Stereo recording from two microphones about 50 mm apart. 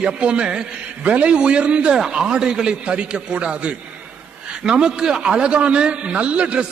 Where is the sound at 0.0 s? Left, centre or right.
Right.